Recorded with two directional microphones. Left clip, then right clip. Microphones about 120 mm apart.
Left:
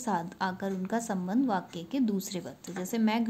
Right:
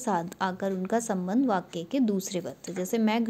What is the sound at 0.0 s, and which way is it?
A woman's voice, 45° right (ahead or behind).